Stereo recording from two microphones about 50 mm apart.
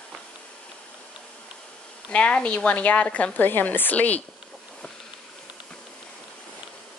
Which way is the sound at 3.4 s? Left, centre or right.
Left.